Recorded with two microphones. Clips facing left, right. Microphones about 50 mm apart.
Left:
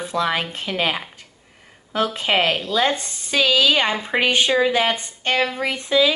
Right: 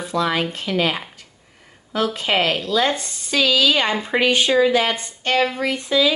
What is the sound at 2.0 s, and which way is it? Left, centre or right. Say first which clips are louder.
A woman's voice: even; centre.